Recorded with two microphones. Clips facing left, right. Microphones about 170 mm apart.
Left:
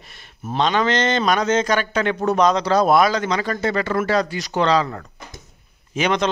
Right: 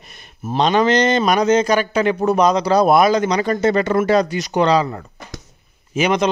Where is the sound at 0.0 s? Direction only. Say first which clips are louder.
Right 2 dB; 15° right (ahead or behind).